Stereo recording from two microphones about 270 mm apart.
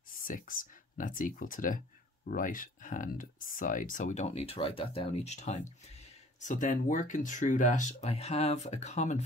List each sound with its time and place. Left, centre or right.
0.3 s speech: left